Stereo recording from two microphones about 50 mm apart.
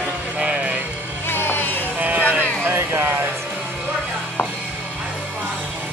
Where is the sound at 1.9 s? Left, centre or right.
Right.